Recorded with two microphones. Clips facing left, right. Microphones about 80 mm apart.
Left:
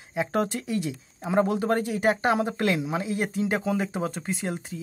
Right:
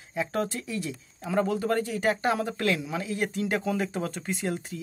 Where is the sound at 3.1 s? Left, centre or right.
Centre.